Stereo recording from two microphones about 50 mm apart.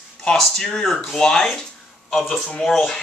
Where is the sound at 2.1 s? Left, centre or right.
Centre.